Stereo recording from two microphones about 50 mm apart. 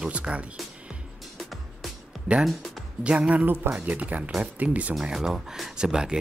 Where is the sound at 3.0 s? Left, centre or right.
Right.